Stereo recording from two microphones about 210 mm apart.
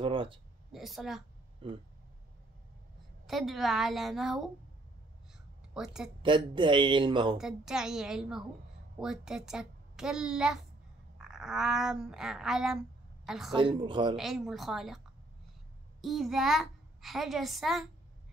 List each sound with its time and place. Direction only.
0.0 s speech: 25° right (ahead or behind)
0.7 s a child's voice: centre (ahead or behind)
1.6 s speech: 25° right (ahead or behind)
3.3 s a child's voice: centre (ahead or behind)
5.8 s a child's voice: centre (ahead or behind)
6.2 s speech: 25° right (ahead or behind)
7.3 s a child's voice: centre (ahead or behind)
13.5 s speech: 25° right (ahead or behind)
14.1 s a child's voice: centre (ahead or behind)
16.0 s a child's voice: centre (ahead or behind)